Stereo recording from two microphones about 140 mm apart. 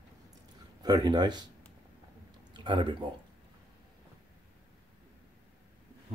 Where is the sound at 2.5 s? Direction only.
35° right (ahead or behind).